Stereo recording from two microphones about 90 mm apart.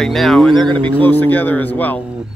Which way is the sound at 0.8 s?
20° left (ahead or behind).